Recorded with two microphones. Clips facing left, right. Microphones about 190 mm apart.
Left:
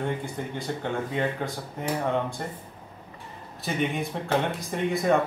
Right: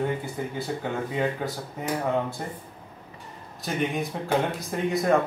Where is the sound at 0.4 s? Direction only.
5° right (ahead or behind).